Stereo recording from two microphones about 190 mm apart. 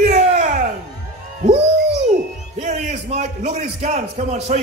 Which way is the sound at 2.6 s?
35° right (ahead or behind).